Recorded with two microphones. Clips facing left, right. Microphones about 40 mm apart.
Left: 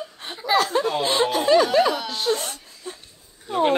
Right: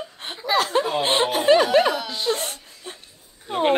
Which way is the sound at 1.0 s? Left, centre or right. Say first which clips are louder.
Right 3 dB; right.